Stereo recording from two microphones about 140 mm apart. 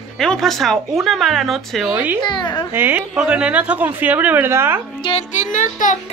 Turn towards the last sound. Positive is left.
turn(degrees=65)  # may be behind; listen again after turning